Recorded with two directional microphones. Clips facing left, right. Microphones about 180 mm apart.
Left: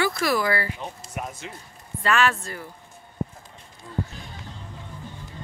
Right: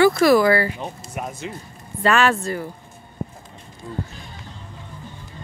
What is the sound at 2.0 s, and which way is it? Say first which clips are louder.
Speech: right 4 dB; 30° right (ahead or behind).